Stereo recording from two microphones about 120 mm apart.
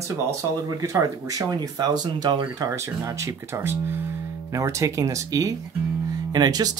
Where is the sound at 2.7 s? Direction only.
25° right (ahead or behind).